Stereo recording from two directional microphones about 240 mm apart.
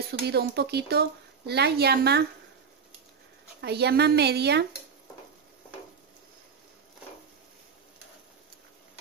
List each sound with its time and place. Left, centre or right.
0.3 s speech: right
3.6 s speech: right